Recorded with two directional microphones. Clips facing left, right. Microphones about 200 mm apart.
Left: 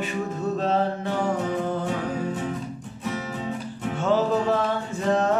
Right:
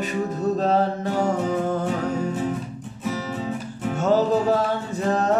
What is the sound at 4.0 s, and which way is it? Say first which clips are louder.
Music: right 3 dB; 40° right (ahead or behind).